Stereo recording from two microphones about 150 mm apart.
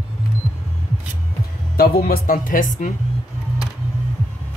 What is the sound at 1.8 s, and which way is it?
Speech, 80° left.